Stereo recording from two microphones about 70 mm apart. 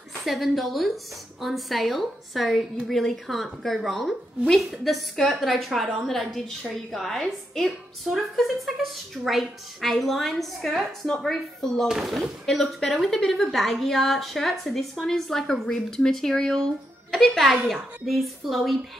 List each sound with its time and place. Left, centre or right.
0.2 s a woman's voice: centre